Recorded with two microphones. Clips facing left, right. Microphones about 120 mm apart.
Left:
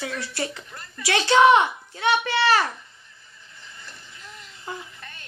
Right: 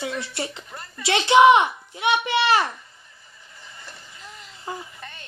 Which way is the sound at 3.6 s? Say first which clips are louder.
Right 2 dB; 35° right (ahead or behind).